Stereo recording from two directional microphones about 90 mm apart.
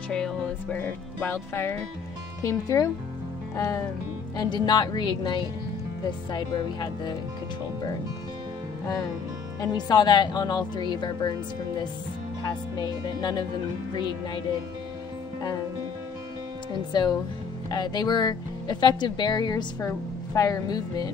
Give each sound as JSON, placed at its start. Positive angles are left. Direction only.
{"t": 0.1, "sound": "speech", "side_deg": 5}
{"t": 0.7, "sound": "speech", "side_deg": 20}
{"t": 4.4, "sound": "speech", "side_deg": 50}
{"t": 9.6, "sound": "speech", "side_deg": 55}
{"t": 12.4, "sound": "speech", "side_deg": 55}
{"t": 16.9, "sound": "speech", "side_deg": 50}